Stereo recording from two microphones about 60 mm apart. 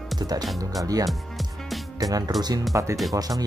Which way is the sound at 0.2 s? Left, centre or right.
Right.